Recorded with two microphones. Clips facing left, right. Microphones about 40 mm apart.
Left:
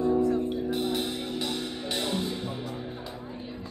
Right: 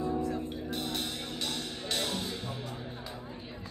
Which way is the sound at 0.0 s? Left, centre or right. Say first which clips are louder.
Left 8 dB; left.